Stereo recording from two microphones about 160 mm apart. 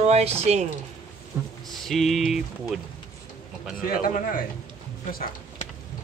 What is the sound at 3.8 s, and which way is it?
A man's voice, 60° left (ahead or behind).